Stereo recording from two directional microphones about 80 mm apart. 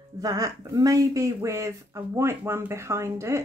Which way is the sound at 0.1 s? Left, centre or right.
Right.